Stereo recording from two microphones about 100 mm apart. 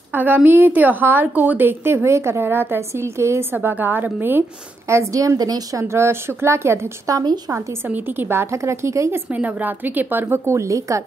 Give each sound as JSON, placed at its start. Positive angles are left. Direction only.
{"t": 0.1, "sound": "a woman's voice", "side_deg": -20}
{"t": 7.2, "sound": "a woman's voice", "side_deg": -40}
{"t": 7.9, "sound": "a woman's voice", "side_deg": -20}
{"t": 9.3, "sound": "a woman's voice", "side_deg": -15}